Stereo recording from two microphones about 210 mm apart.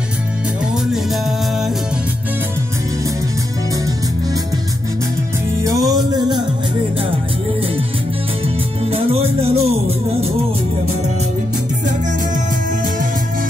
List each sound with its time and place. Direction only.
5.6 s music: 15° right (ahead or behind)
8.9 s music: 30° right (ahead or behind)